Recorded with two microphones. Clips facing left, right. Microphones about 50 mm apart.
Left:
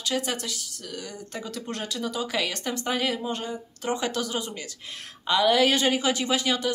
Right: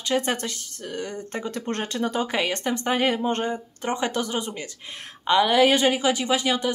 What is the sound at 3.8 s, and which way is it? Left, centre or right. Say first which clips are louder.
A woman's voice: right 2 dB; right.